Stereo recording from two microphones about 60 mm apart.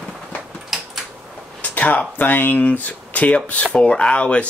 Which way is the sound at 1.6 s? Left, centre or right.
Left.